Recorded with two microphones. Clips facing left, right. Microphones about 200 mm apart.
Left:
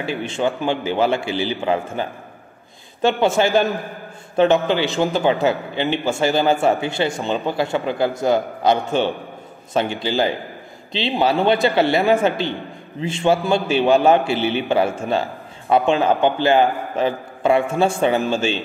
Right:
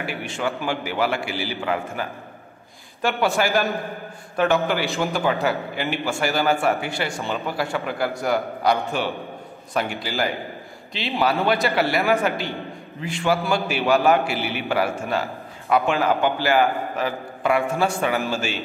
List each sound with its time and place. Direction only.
0.0 s a man's voice: 25° left (ahead or behind)
11.7 s a man's voice: 25° left (ahead or behind)